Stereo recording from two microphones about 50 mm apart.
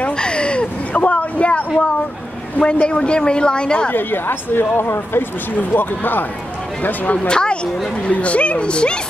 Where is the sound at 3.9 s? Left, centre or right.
Left.